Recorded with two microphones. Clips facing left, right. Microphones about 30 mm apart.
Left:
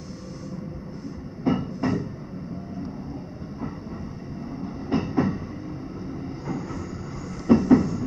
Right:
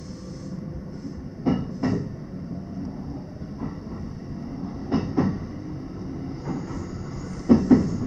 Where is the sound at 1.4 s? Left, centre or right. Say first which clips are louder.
Even; centre.